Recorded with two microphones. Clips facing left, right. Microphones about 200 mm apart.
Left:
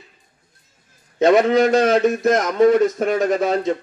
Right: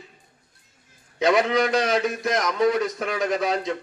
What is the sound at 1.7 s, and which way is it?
Speech, 50° left (ahead or behind).